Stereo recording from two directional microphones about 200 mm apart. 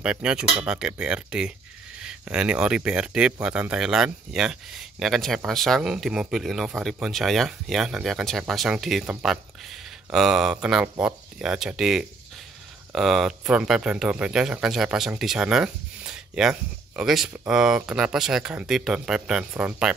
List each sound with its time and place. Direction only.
0.0 s speech: 5° right (ahead or behind)
10.1 s speech: centre (ahead or behind)